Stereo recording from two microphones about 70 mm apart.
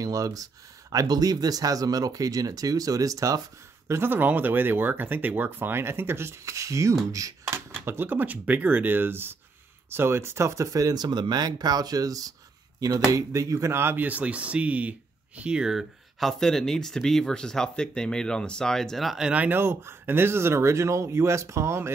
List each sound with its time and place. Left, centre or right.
0.0 s speech: right
3.8 s speech: right
6.4 s speech: right
7.4 s speech: right
14.0 s speech: right; by 19.2 s centre
19.2 s speech: right
19.6 s speech: right